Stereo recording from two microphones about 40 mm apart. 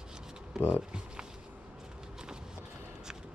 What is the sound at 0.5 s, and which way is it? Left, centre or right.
Music, centre.